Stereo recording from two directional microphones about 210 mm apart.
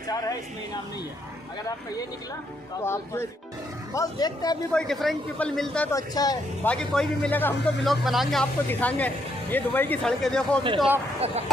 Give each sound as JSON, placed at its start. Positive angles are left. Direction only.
{"t": 2.8, "sound": "speech", "side_deg": 10}
{"t": 4.7, "sound": "speech", "side_deg": 0}
{"t": 5.9, "sound": "speech", "side_deg": 15}
{"t": 6.7, "sound": "speech", "side_deg": 5}
{"t": 11.1, "sound": "speech", "side_deg": -30}